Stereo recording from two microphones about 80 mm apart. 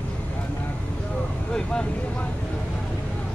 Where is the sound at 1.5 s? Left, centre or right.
Centre.